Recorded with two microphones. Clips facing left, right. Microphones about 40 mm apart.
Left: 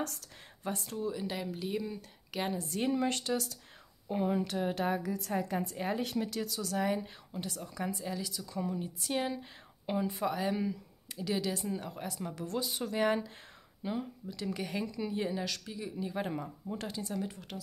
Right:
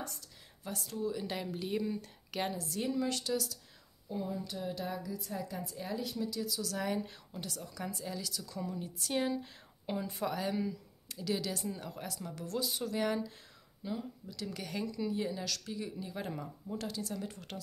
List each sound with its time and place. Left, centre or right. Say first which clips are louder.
0.0 s a woman's voice: left 6 dB; left
0.7 s speech: left 2 dB; left
1.1 s speech: left 1 dB; centre
2.5 s speech: left 3 dB; left
4.1 s a woman's voice: left 7 dB; left
6.8 s speech: left 5 dB; centre
12.1 s speech: left 3 dB; left
15.6 s speech: left 2 dB; centre
16.1 s speech: left 4 dB; left
17.2 s speech: left 3 dB; centre